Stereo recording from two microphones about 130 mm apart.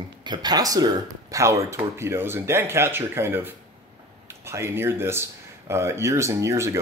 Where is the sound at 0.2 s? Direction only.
35° right (ahead or behind).